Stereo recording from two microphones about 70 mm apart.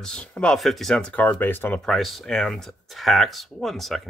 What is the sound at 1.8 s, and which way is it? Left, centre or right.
Speech, centre.